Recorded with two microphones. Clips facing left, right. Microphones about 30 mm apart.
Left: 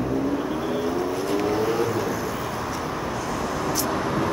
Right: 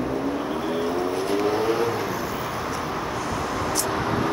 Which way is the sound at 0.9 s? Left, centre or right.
Right.